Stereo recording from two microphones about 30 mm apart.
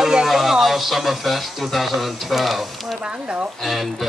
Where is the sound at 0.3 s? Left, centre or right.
Centre.